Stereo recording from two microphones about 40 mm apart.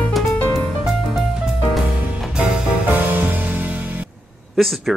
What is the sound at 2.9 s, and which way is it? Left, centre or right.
Music, right.